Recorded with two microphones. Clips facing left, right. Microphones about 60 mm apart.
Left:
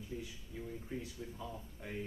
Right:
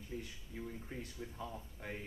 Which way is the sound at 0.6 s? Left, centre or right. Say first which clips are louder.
Left 2 dB; centre.